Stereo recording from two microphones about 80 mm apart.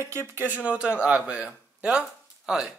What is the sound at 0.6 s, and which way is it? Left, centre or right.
Speech, centre.